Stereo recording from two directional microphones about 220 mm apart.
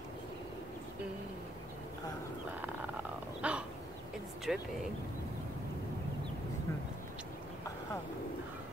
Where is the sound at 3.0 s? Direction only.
5° right (ahead or behind).